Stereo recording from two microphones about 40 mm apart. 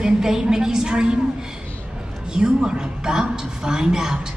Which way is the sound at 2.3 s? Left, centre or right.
Right.